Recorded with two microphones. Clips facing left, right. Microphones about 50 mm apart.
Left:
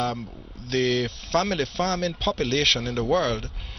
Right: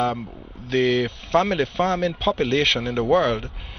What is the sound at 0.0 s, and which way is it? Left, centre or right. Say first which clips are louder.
Speech: right 4 dB; centre.